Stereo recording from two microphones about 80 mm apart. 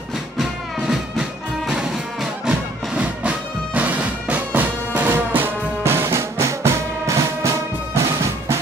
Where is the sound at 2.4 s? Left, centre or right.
Centre.